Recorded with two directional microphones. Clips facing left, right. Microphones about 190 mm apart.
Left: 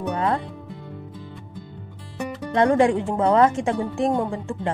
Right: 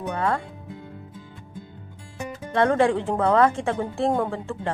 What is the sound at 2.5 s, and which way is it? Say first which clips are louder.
A woman's voice: left 2 dB; 15° left (ahead or behind).